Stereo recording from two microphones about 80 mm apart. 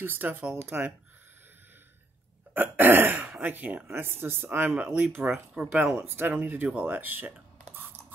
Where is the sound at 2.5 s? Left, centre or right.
Right.